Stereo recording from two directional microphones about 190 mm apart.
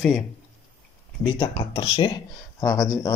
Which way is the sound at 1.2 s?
20° left (ahead or behind).